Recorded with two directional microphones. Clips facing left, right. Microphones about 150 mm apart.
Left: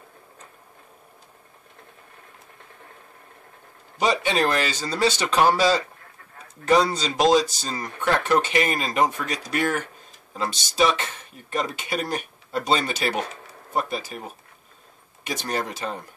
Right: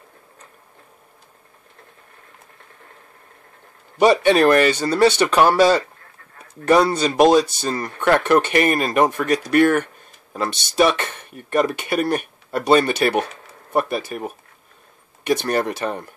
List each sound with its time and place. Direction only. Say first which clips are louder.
4.0 s speech: right 8 dB; 65° right (ahead or behind)